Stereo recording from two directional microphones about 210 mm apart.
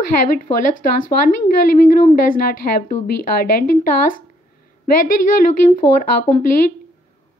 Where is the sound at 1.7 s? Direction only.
40° left (ahead or behind).